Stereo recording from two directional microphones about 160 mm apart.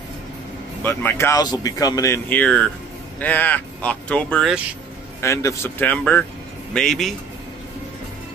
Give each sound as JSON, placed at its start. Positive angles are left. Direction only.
{"t": 0.8, "sound": "speech", "side_deg": 15}
{"t": 5.2, "sound": "speech", "side_deg": 20}